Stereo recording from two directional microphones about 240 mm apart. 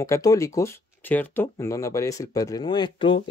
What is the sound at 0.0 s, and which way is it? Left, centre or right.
Speech, centre.